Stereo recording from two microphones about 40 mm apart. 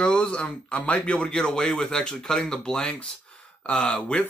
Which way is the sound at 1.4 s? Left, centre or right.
Centre.